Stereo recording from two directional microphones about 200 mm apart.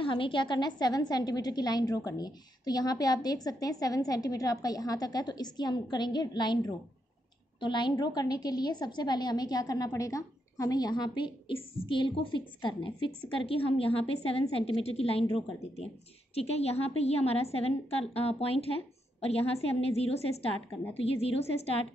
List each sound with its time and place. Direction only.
0.0 s a woman's voice: 25° left (ahead or behind)